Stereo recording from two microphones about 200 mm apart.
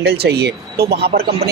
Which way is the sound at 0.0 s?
55° right (ahead or behind).